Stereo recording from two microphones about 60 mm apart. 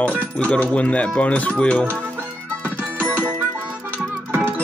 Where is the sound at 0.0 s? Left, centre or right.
Centre.